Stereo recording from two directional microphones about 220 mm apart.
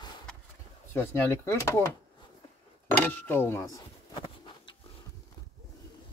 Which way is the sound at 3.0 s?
10° left (ahead or behind).